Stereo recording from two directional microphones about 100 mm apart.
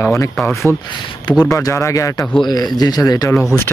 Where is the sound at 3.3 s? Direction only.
30° left (ahead or behind).